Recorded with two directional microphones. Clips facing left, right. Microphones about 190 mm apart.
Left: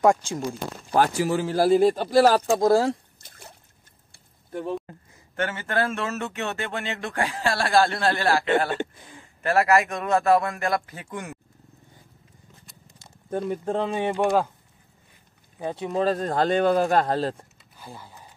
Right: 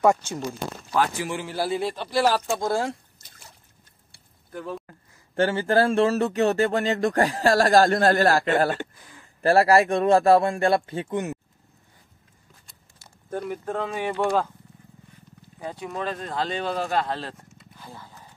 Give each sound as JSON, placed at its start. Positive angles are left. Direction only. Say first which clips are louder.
{"t": 0.2, "sound": "speech", "louder": "left 1 dB", "side_deg": 10}
{"t": 0.9, "sound": "a man's voice", "louder": "left 4 dB", "side_deg": 40}
{"t": 3.2, "sound": "trickle", "louder": "left 5 dB", "side_deg": 55}
{"t": 4.5, "sound": "speech", "louder": "left 4 dB", "side_deg": 25}
{"t": 5.3, "sound": "speech", "louder": "right 6 dB", "side_deg": -30}
{"t": 8.7, "sound": "throat clearing", "louder": "left 5 dB", "side_deg": 20}
{"t": 9.4, "sound": "a man's voice", "louder": "right 3 dB", "side_deg": -35}
{"t": 13.0, "sound": "speech", "louder": "left 3 dB", "side_deg": 25}
{"t": 15.6, "sound": "speech", "louder": "left 6 dB", "side_deg": 25}
{"t": 17.7, "sound": "a sound", "louder": "left 1 dB", "side_deg": 10}